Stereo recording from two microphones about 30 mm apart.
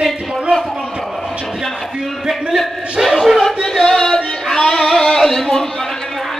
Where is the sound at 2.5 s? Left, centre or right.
Centre.